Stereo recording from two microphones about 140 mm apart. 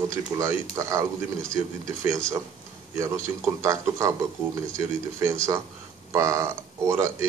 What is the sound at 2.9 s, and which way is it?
A man's voice, 20° right (ahead or behind).